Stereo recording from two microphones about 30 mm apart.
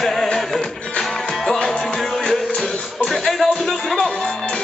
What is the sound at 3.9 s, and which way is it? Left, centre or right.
Music, left.